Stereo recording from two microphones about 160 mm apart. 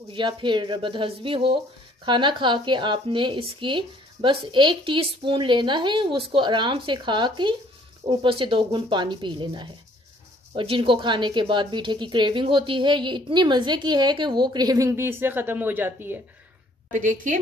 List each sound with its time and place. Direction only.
0.1 s a woman's voice: 30° right (ahead or behind); by 16.2 s 10° right (ahead or behind)
16.9 s a woman's voice: 55° right (ahead or behind)